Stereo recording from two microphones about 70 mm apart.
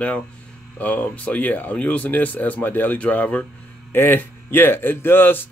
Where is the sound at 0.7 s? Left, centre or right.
Left.